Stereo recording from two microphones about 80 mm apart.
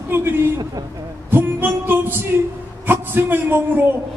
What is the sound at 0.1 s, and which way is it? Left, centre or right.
Speech, right.